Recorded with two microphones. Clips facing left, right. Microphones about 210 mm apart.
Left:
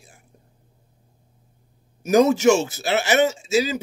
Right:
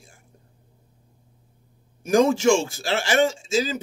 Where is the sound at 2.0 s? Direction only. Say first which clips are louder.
Left 2 dB; 30° right (ahead or behind).